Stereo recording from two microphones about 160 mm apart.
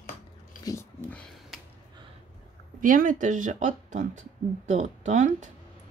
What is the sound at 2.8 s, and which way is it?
Speech, 60° right (ahead or behind).